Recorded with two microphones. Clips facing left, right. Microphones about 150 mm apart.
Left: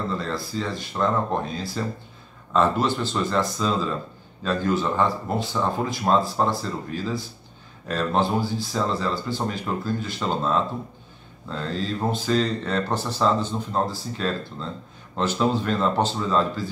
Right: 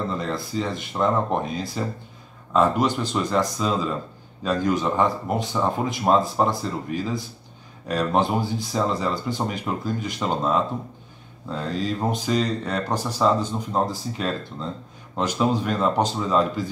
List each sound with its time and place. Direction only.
0.1 s speech: 20° right (ahead or behind)